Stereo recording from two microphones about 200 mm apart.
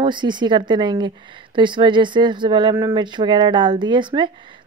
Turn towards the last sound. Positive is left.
turn(degrees=-25)  # may be behind; listen again after turning